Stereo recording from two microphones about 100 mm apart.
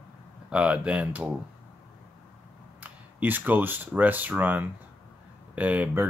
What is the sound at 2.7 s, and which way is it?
Speech, 15° right (ahead or behind).